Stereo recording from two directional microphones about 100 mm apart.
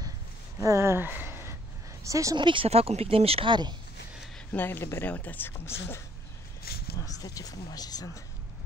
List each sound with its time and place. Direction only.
0.6 s a sound: 30° right (ahead or behind)
2.0 s speech: 30° right (ahead or behind)
2.3 s speech: 55° right (ahead or behind); by 3.5 s 70° right (ahead or behind)
4.5 s speech: 20° left (ahead or behind)
7.2 s speech: 40° left (ahead or behind)